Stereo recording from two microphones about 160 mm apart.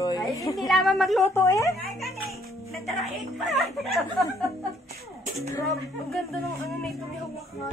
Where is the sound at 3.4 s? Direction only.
Centre (ahead or behind).